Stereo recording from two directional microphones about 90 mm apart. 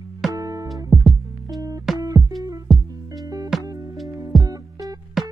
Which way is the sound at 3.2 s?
45° right (ahead or behind).